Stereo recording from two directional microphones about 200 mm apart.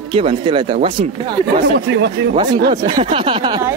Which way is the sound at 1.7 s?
55° right (ahead or behind).